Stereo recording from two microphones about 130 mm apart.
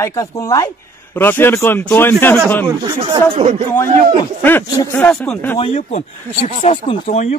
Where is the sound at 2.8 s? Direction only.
35° right (ahead or behind).